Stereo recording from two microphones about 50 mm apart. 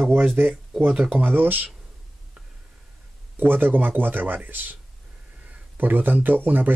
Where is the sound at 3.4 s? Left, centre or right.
Right.